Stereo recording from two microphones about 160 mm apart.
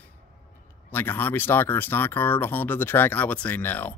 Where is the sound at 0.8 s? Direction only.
10° left (ahead or behind).